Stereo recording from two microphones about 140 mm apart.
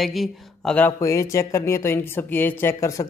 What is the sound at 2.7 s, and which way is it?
Speech, 25° left (ahead or behind).